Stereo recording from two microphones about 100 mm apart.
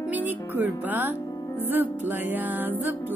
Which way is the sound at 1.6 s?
20° right (ahead or behind).